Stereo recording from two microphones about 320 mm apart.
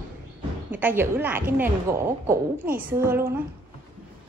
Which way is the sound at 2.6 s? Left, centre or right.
Right.